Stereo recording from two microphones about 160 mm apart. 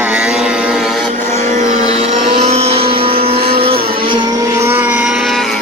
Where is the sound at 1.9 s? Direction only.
40° right (ahead or behind); by 4.7 s 25° right (ahead or behind).